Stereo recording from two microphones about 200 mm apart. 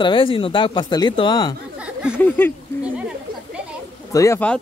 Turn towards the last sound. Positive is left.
turn(degrees=10)  # may be behind; listen again after turning